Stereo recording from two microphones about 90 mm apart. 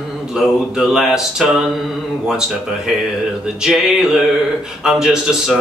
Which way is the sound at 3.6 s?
5° right (ahead or behind).